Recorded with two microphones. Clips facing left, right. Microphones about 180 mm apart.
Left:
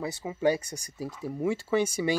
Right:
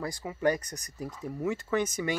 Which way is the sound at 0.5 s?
10° left (ahead or behind).